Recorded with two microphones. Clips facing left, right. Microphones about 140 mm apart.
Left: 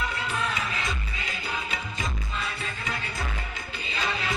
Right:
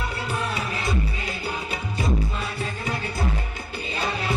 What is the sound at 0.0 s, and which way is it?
Music, 40° right (ahead or behind).